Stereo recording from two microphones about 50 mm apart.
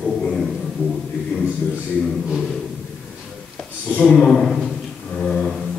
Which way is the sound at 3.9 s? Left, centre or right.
Left.